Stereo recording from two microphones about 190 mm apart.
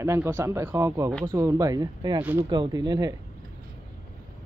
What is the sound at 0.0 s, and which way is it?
Speech, 15° right (ahead or behind).